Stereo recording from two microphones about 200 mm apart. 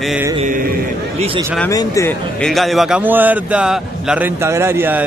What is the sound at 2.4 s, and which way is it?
A man's voice, centre (ahead or behind).